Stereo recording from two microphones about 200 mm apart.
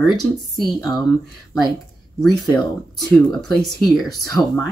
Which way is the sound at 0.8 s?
20° left (ahead or behind).